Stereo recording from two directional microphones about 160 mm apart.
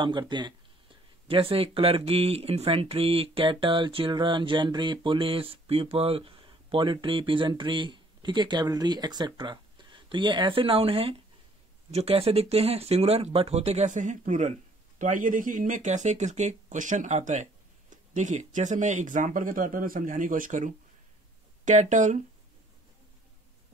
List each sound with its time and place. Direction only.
0.0 s speech: 30° right (ahead or behind); by 22.2 s 50° right (ahead or behind)